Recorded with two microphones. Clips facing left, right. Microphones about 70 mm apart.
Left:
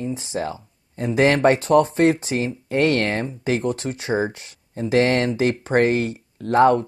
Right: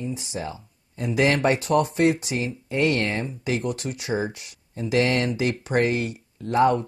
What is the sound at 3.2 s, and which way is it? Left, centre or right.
Speech, left.